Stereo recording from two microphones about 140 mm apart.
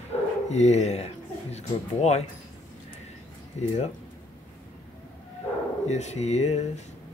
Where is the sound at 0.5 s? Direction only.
55° left (ahead or behind).